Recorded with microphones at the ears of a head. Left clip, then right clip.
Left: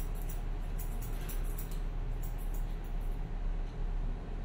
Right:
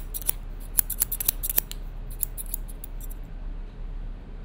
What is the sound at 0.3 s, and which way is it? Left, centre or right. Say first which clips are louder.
Scissors: right 7 dB; right.